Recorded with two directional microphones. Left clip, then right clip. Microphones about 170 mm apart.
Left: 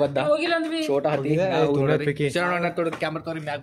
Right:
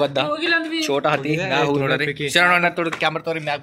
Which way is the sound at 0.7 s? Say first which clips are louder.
Right 3 dB; 10° right (ahead or behind).